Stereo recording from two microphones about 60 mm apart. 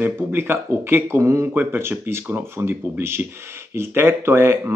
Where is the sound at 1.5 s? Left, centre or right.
Right.